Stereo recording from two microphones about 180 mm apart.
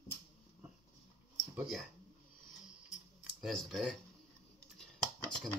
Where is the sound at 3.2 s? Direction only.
Centre (ahead or behind).